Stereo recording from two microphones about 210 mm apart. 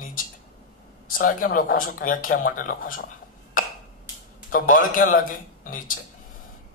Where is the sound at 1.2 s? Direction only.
40° left (ahead or behind).